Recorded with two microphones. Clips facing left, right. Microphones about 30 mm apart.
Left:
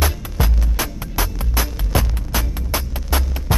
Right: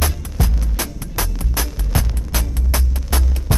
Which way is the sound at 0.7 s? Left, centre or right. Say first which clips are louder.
Left 2 dB; centre.